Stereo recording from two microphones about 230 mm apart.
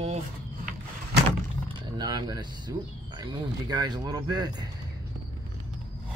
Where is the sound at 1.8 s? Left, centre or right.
Centre.